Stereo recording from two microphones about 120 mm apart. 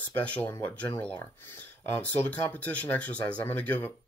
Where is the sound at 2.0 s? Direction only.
15° left (ahead or behind).